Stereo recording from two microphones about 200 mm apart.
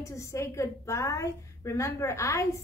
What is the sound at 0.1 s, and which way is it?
A woman's voice, 15° left (ahead or behind).